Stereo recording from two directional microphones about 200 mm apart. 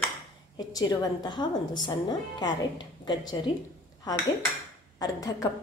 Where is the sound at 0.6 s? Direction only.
20° left (ahead or behind).